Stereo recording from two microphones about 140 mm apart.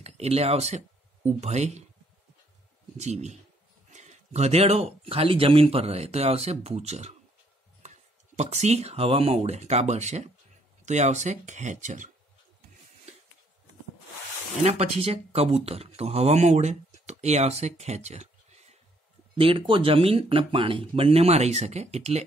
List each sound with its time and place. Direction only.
0.0 s speech: 50° right (ahead or behind)
3.0 s speech: 55° right (ahead or behind)
13.1 s a sound: 50° right (ahead or behind)
14.6 s speech: 45° right (ahead or behind)
19.3 s speech: 40° right (ahead or behind)